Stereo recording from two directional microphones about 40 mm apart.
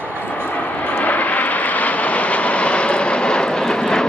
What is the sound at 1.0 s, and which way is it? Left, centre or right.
Vehicle, left.